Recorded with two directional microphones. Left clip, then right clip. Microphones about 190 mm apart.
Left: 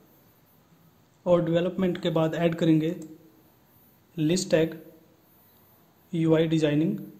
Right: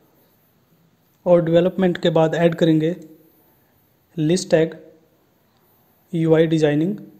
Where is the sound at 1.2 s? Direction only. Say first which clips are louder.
Right 8 dB; 25° right (ahead or behind).